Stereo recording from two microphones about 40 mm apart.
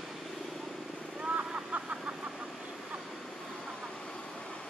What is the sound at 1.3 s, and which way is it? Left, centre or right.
Vehicle, right.